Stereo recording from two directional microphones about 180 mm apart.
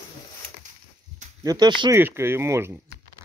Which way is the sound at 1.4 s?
20° right (ahead or behind).